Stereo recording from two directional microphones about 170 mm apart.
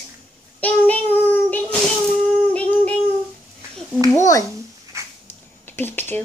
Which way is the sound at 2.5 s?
5° left (ahead or behind).